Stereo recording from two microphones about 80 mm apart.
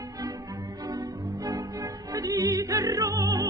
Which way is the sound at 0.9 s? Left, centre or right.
Right.